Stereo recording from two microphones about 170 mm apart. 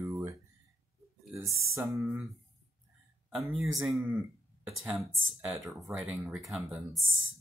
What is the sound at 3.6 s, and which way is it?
Speech, 5° right (ahead or behind).